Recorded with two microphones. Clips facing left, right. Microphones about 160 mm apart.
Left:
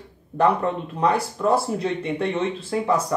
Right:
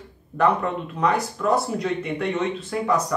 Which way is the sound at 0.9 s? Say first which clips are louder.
Even; 30° left (ahead or behind).